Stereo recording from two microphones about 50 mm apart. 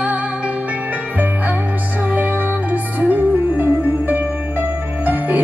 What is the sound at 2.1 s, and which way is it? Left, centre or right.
Music, right.